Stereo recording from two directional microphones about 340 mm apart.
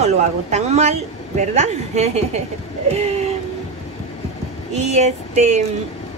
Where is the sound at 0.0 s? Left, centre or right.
Centre.